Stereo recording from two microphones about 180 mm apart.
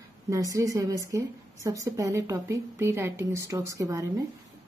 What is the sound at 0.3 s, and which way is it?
A woman's voice, 15° right (ahead or behind).